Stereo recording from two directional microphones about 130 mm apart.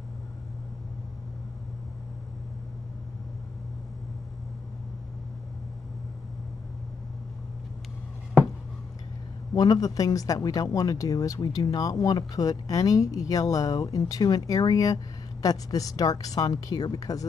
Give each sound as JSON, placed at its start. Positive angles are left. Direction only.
{"t": 9.6, "sound": "speech", "side_deg": 30}